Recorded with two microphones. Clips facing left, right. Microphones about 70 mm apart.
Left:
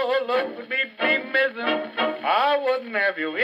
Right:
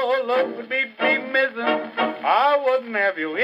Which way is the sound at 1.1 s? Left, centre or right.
Centre.